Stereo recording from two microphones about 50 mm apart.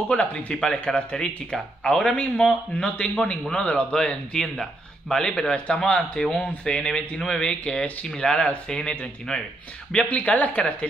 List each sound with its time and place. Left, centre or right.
0.1 s a man's voice: left
9.9 s speech: left